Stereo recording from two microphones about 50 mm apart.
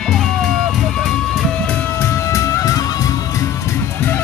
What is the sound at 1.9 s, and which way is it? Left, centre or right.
Music, left.